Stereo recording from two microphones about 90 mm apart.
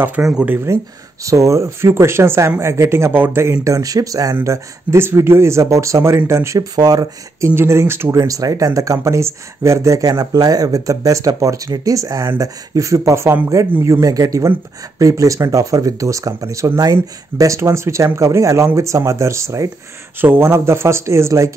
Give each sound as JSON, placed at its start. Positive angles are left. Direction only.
{"t": 0.2, "sound": "speech", "side_deg": -10}
{"t": 0.7, "sound": "speech", "side_deg": -35}
{"t": 3.6, "sound": "speech", "side_deg": -40}
{"t": 4.4, "sound": "speech", "side_deg": -30}
{"t": 6.7, "sound": "speech", "side_deg": -45}